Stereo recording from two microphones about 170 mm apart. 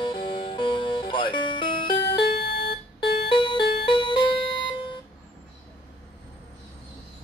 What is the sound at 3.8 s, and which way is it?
Music, 30° left (ahead or behind).